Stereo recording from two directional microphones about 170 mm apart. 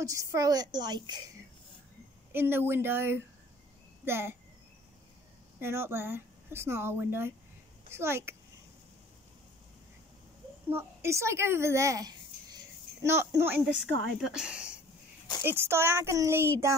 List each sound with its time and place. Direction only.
0.0 s a woman's voice: 20° right (ahead or behind)
2.3 s speech: 15° right (ahead or behind)
5.6 s speech: 15° right (ahead or behind)
10.7 s speech: 15° right (ahead or behind)
14.2 s speech: 5° right (ahead or behind)